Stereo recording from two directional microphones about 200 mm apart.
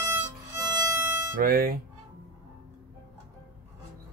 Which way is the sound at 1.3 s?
45° right (ahead or behind).